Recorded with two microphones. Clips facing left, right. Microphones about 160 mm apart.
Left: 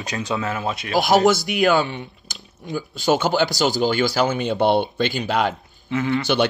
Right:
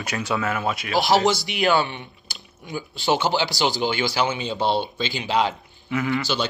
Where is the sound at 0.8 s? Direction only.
45° left (ahead or behind).